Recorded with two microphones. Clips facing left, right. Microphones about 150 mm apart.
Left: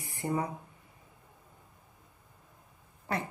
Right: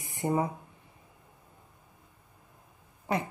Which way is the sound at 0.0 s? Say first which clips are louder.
Right 4 dB; 20° right (ahead or behind).